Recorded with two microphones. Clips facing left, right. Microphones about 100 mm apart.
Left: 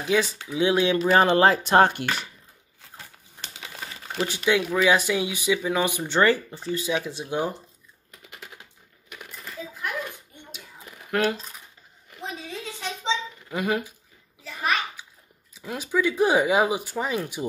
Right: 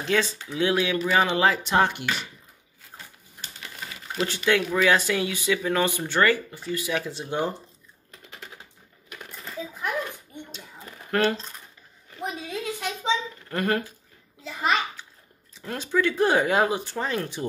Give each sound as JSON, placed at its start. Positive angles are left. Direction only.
{"t": 0.0, "sound": "speech", "side_deg": 15}
{"t": 1.2, "sound": "speech", "side_deg": 40}
{"t": 4.2, "sound": "speech", "side_deg": 15}
{"t": 8.1, "sound": "typing", "side_deg": 5}
{"t": 9.9, "sound": "a sound", "side_deg": 5}
{"t": 12.2, "sound": "a sound", "side_deg": -10}
{"t": 13.5, "sound": "speech", "side_deg": 5}
{"t": 15.5, "sound": "speech", "side_deg": 5}